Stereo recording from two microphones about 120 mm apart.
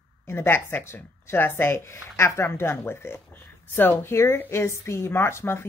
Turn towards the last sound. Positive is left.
turn(degrees=20)  # may be behind; listen again after turning